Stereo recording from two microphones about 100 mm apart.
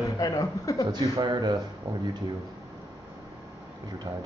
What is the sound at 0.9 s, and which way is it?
Speech, 45° right (ahead or behind).